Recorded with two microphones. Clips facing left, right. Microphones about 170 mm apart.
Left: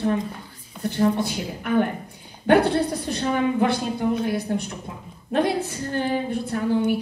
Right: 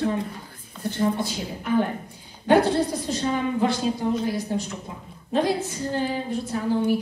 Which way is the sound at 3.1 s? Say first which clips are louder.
Left 4 dB; 60° left (ahead or behind).